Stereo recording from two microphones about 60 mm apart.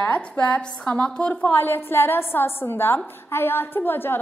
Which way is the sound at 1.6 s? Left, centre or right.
Left.